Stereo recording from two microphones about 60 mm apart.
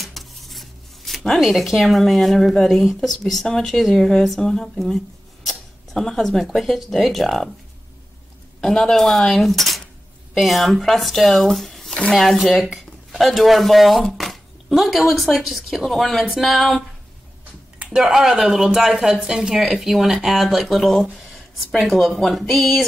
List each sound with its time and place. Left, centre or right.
0.0 s speech: centre
8.5 s speech: centre
17.7 s a sound: centre
18.0 s speech: centre